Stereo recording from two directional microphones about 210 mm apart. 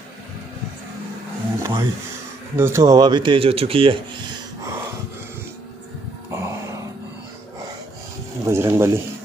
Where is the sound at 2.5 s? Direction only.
10° right (ahead or behind).